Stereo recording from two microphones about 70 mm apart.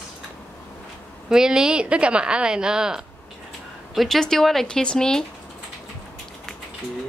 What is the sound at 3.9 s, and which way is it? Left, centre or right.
Speech, centre.